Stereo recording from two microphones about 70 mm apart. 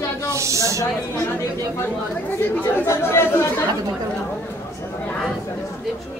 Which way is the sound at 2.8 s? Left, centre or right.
Left.